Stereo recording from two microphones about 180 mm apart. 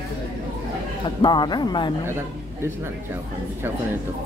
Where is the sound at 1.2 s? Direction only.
25° left (ahead or behind).